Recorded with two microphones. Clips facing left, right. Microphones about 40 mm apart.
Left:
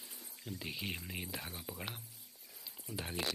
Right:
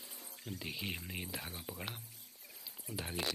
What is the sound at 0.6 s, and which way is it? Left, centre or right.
Speech, centre.